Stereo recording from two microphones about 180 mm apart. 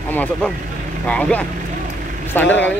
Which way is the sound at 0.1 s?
10° left (ahead or behind).